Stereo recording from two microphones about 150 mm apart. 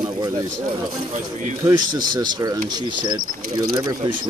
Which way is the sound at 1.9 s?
30° right (ahead or behind).